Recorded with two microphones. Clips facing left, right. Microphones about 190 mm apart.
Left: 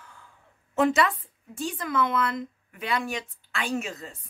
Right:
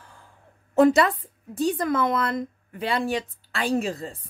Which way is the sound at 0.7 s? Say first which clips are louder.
Right 5 dB; 35° right (ahead or behind).